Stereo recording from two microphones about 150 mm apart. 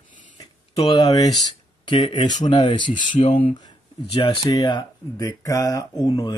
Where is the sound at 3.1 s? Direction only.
55° left (ahead or behind).